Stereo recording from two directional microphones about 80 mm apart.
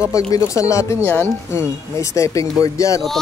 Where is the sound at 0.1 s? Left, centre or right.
Left.